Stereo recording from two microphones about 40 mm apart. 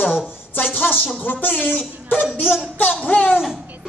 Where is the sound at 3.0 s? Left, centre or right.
Left.